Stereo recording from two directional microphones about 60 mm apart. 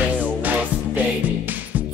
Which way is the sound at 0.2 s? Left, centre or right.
Right.